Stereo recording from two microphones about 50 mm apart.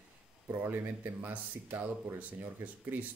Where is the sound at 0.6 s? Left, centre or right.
Right.